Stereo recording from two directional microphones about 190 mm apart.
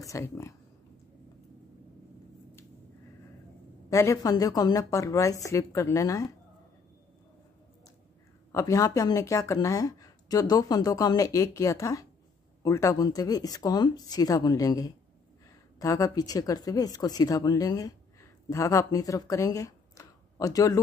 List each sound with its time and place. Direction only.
0.0 s speech: 15° left (ahead or behind)
3.9 s speech: 15° left (ahead or behind)
8.5 s speech: 15° left (ahead or behind)